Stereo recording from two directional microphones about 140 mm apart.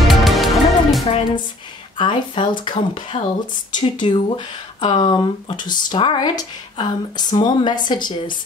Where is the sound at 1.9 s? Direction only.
35° left (ahead or behind).